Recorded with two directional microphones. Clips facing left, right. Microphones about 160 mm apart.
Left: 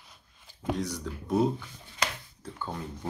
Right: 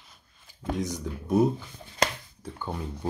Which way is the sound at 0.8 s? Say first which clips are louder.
Right 2 dB; 15° right (ahead or behind).